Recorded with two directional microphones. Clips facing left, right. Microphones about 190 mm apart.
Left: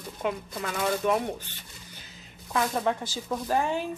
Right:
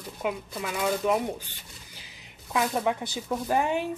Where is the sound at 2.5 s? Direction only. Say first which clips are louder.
Even; 10° right (ahead or behind).